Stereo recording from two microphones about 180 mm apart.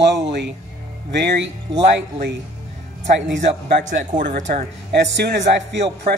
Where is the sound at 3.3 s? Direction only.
70° right (ahead or behind).